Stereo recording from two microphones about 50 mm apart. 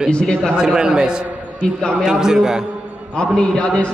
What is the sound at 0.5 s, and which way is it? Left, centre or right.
A man's voice, centre.